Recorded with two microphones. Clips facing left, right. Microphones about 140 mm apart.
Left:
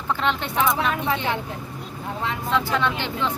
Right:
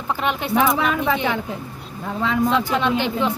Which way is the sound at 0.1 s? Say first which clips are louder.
Right 3 dB; 10° right (ahead or behind).